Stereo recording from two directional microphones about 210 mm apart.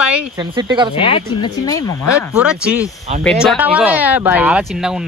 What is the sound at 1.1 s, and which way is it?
Speech, 20° left (ahead or behind).